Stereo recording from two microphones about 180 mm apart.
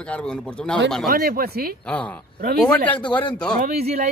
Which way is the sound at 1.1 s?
55° right (ahead or behind).